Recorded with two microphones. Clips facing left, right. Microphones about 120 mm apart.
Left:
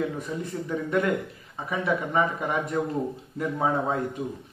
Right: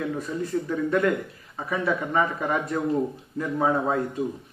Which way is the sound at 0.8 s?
20° left (ahead or behind).